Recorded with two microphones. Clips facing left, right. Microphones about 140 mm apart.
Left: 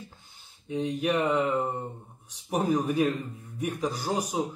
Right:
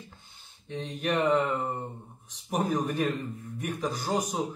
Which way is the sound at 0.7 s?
10° left (ahead or behind).